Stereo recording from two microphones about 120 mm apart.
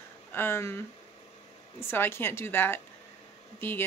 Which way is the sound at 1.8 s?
20° left (ahead or behind).